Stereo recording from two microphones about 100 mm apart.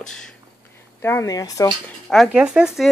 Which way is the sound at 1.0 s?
25° left (ahead or behind).